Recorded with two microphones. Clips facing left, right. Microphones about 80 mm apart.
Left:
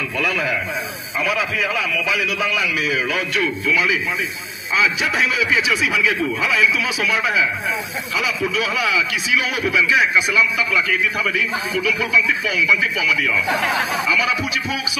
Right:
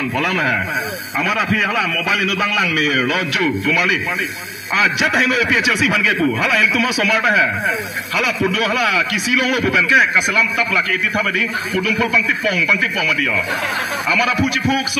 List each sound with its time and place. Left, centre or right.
0.2 s a man's voice: right
1.2 s a man's voice: right
14.1 s a man's voice: right